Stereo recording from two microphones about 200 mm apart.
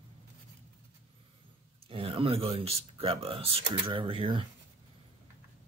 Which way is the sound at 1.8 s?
30° right (ahead or behind).